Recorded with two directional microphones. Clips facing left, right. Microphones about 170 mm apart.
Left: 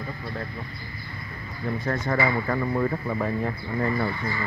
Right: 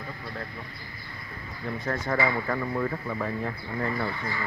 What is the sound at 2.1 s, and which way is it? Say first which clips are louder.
Speech: left 2 dB; 10° left (ahead or behind).